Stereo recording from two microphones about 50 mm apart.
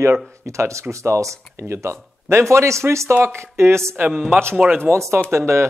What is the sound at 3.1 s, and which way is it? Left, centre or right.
Speech, right.